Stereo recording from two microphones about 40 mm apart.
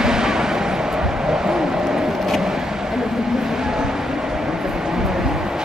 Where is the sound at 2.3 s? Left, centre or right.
Centre.